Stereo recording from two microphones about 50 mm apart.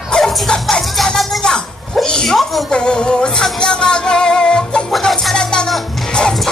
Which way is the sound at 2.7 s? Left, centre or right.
Centre.